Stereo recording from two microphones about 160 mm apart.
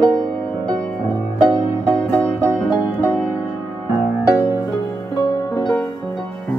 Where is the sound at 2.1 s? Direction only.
15° right (ahead or behind).